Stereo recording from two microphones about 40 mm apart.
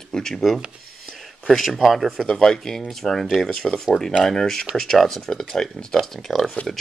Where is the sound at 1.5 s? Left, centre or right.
Centre.